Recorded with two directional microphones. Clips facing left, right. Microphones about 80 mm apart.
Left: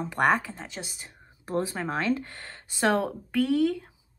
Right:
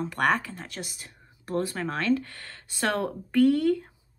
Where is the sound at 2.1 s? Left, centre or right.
Left.